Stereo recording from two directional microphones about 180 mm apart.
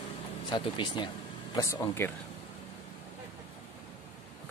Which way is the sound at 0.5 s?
25° left (ahead or behind).